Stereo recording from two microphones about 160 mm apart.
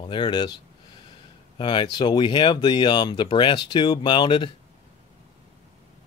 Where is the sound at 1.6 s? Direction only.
30° left (ahead or behind).